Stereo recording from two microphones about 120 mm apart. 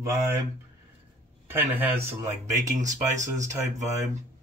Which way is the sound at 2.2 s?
25° right (ahead or behind).